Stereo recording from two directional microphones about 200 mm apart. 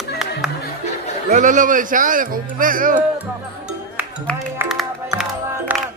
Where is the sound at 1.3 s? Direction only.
40° right (ahead or behind).